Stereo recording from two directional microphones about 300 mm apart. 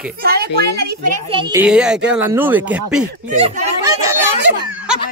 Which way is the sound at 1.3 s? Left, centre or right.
Centre.